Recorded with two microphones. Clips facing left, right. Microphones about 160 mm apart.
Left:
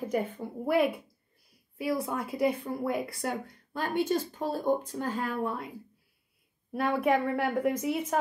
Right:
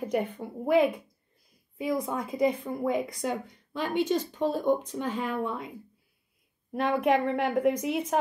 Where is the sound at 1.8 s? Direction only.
5° left (ahead or behind).